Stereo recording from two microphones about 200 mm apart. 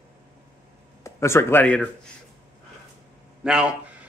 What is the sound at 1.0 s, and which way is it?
Speech, 15° left (ahead or behind).